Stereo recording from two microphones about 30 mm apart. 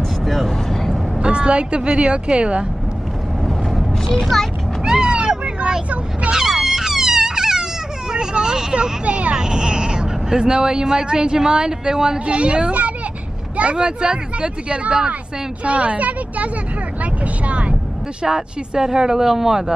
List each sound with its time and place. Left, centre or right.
0.2 s vehicle: centre
1.2 s speech: right
3.4 s vehicle: centre
4.8 s cat: right
6.3 s wail: centre
8.1 s speech: right
9.0 s speech: right
9.4 s speech: right
12.3 s a woman's voice: right
17.0 s vehicle: right
18.2 s speech: centre